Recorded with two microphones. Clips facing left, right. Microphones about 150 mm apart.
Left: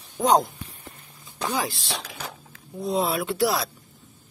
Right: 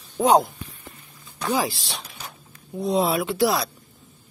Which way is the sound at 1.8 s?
90° left.